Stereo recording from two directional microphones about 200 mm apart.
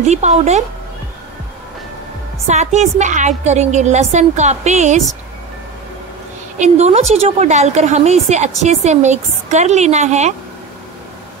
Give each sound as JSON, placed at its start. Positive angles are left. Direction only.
{"t": 0.0, "sound": "a woman's voice", "side_deg": -35}
{"t": 2.4, "sound": "a woman's voice", "side_deg": -35}
{"t": 6.6, "sound": "a woman's voice", "side_deg": -35}